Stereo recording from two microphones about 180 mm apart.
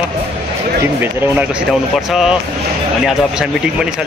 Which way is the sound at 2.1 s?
Centre (ahead or behind).